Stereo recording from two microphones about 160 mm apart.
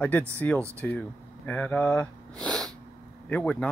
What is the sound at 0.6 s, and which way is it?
Speech, 15° right (ahead or behind).